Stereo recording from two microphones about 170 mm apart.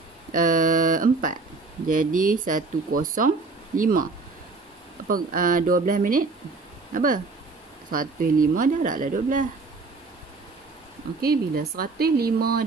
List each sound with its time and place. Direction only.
0.3 s speech: 50° right (ahead or behind)
11.1 s speech: 65° right (ahead or behind)